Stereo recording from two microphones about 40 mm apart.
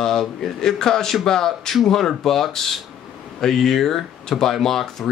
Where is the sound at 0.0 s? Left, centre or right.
Centre.